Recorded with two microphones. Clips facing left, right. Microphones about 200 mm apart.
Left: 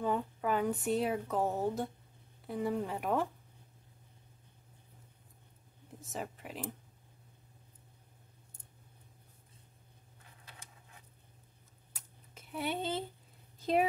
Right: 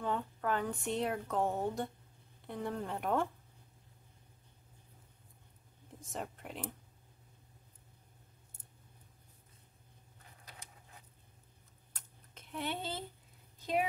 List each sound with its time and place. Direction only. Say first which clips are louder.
0.0 s a woman's voice: left 3 dB; 10° left (ahead or behind)
5.9 s speech: left 1 dB; centre (ahead or behind)
11.9 s a sound: left 2 dB; 5° left (ahead or behind)